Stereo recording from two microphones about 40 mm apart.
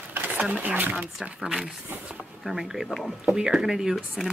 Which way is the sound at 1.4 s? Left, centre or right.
Centre.